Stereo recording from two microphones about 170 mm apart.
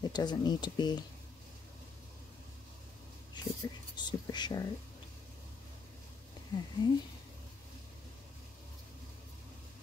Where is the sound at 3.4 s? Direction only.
25° left (ahead or behind).